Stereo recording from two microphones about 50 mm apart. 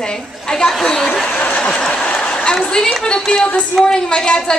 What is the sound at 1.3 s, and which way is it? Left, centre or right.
Speech, left.